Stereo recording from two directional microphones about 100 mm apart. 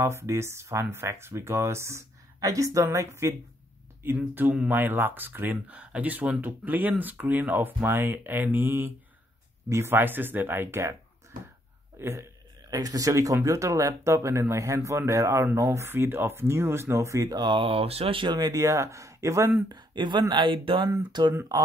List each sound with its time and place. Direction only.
0.0 s speech: 25° right (ahead or behind)
12.0 s speech: 30° right (ahead or behind)
12.6 s speech: 40° right (ahead or behind)
17.4 s speech: 55° right (ahead or behind); by 19.5 s 30° right (ahead or behind)
19.7 s speech: 50° right (ahead or behind)
21.1 s speech: 45° right (ahead or behind)